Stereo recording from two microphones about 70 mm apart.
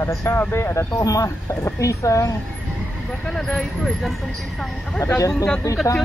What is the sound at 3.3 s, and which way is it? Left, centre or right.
Speech, centre.